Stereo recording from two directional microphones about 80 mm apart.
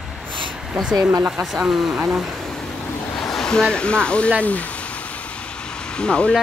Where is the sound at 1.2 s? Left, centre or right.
Centre.